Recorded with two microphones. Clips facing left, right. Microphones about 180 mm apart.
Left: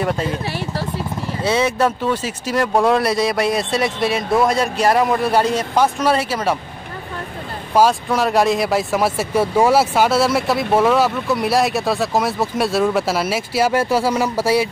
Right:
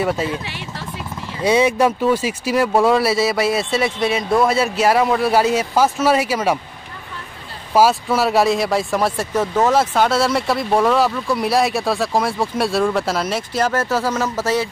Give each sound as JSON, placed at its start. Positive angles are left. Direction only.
{"t": 0.0, "sound": "speech", "side_deg": -5}
{"t": 0.5, "sound": "speech", "side_deg": 40}
{"t": 1.4, "sound": "speech", "side_deg": -15}
{"t": 7.7, "sound": "speech", "side_deg": -5}